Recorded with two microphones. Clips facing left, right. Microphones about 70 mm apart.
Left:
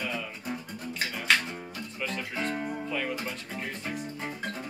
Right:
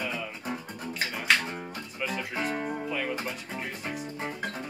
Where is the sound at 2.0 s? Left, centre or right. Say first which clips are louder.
Right 1 dB; centre.